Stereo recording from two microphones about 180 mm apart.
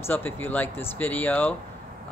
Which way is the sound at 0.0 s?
10° left (ahead or behind).